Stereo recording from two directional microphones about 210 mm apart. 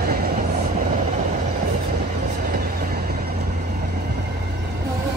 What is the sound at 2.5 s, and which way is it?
Train, 45° right (ahead or behind).